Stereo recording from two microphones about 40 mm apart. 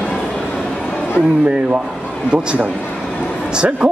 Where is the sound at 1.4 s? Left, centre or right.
Right.